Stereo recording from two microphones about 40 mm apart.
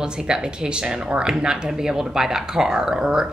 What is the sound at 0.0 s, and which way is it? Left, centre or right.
A woman's voice, centre.